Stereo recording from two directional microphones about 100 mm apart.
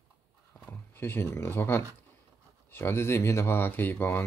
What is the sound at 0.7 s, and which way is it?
Speech, 20° left (ahead or behind).